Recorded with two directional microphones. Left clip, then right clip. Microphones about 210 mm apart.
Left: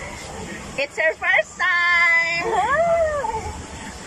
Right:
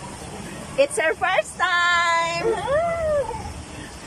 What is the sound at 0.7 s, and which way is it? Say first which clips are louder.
Speech: right 2 dB; 15° right (ahead or behind).